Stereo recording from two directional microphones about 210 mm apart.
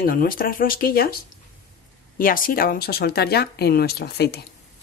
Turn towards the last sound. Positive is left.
turn(degrees=50)  # may be behind; listen again after turning